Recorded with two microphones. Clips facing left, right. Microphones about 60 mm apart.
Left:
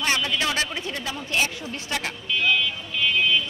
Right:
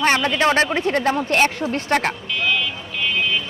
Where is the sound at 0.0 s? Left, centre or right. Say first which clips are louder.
Right 7 dB; right.